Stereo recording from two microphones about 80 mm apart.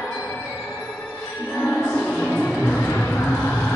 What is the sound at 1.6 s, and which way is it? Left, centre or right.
Music, centre.